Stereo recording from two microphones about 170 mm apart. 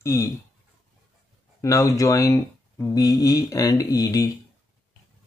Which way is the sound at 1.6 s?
20° left (ahead or behind).